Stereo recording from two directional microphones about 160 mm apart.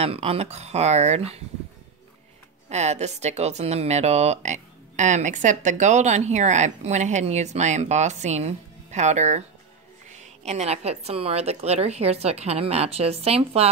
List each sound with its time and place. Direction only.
0.0 s speech: 40° right (ahead or behind)
2.7 s a woman's voice: 45° right (ahead or behind)